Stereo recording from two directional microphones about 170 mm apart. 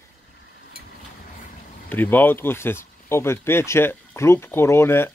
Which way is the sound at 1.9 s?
10° left (ahead or behind).